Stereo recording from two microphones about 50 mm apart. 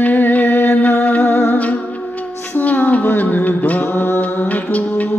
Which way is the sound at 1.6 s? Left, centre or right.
Left.